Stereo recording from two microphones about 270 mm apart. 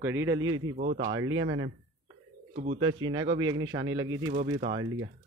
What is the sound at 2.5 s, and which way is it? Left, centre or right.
Speech, right.